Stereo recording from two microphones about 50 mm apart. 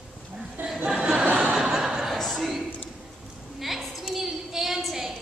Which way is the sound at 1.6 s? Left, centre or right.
Centre.